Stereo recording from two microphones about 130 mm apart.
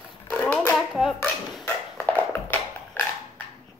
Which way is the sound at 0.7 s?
Centre (ahead or behind).